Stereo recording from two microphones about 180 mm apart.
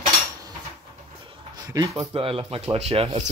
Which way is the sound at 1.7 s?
20° right (ahead or behind).